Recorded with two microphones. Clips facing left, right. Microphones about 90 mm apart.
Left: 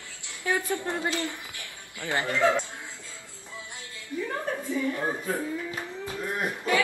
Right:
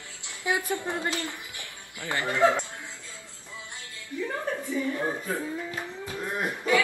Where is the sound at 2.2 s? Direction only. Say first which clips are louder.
Right 2 dB; 20° right (ahead or behind).